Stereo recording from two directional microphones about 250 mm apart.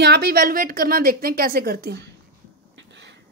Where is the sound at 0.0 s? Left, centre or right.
Right.